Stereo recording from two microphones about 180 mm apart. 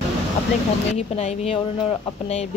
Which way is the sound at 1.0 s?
35° left (ahead or behind).